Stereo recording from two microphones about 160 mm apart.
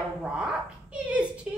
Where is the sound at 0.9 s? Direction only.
5° right (ahead or behind).